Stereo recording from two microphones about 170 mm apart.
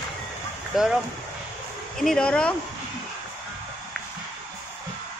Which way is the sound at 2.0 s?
5° left (ahead or behind).